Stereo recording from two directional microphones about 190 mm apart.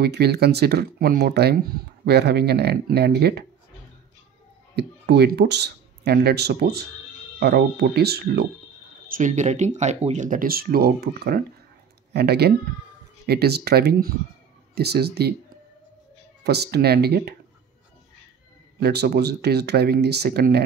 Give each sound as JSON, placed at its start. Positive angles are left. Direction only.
{"t": 0.0, "sound": "speech", "side_deg": -60}
{"t": 4.7, "sound": "speech", "side_deg": -60}
{"t": 9.1, "sound": "speech", "side_deg": -40}
{"t": 16.4, "sound": "speech", "side_deg": -60}
{"t": 18.8, "sound": "speech", "side_deg": -60}